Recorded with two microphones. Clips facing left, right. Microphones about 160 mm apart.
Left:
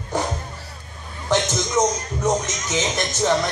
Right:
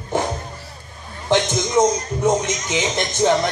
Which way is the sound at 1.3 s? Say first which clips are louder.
Right 3 dB; 20° right (ahead or behind).